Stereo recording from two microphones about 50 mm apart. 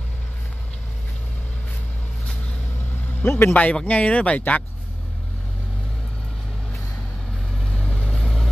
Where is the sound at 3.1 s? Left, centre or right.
Left.